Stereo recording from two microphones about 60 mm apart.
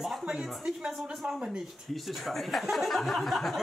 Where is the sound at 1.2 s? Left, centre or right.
Centre.